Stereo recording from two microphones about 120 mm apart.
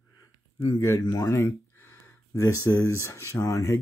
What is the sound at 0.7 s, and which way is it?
Speech, 25° left (ahead or behind).